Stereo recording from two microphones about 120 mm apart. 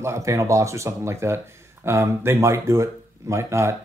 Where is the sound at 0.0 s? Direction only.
25° right (ahead or behind).